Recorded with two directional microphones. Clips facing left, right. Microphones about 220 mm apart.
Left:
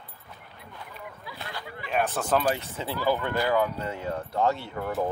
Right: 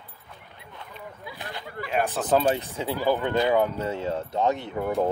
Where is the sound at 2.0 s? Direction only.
15° right (ahead or behind).